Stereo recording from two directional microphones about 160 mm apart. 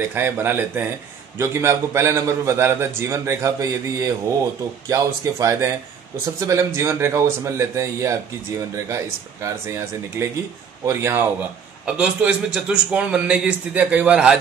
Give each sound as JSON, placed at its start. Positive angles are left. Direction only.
{"t": 0.1, "sound": "a man's voice", "side_deg": -15}
{"t": 9.4, "sound": "a man's voice", "side_deg": -15}